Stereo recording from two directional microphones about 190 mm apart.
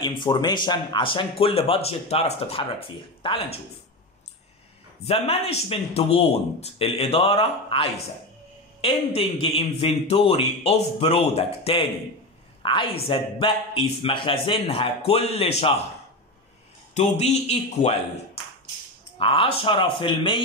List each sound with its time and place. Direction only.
0.0 s speech: 25° left (ahead or behind)
5.0 s a man's voice: 30° left (ahead or behind)
16.9 s a man's voice: 35° left (ahead or behind)